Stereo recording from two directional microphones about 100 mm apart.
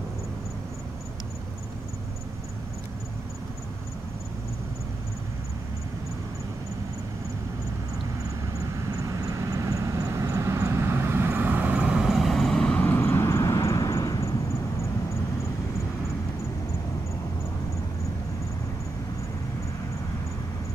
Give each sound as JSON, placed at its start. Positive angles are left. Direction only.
{"t": 8.9, "sound": "vehicle", "side_deg": -35}
{"t": 12.8, "sound": "vehicle", "side_deg": 20}